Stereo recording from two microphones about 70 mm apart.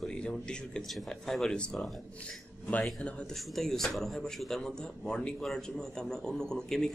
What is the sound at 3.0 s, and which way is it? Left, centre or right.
Speech, centre.